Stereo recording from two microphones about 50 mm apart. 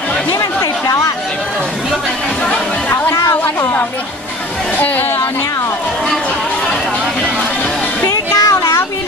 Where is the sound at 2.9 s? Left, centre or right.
Left.